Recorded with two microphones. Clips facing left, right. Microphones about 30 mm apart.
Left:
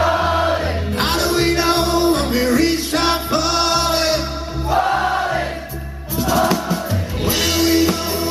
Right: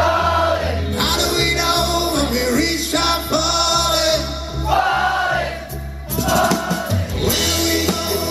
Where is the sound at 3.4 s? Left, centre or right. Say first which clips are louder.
Even; centre.